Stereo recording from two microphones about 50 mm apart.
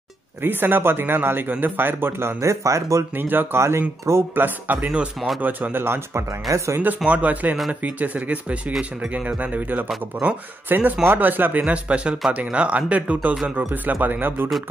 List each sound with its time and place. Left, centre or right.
0.4 s speech: right
2.4 s speech: right
3.2 s speech: right
3.5 s speech: right
4.1 s speech: right
4.8 s speech: right
5.4 s speech: right
6.5 s speech: right
7.1 s speech: right